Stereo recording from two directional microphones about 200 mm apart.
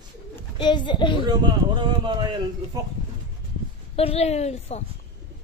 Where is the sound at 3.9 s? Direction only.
30° left (ahead or behind).